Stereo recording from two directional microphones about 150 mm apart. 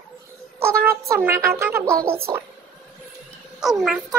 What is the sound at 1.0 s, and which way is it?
Speech, 20° right (ahead or behind).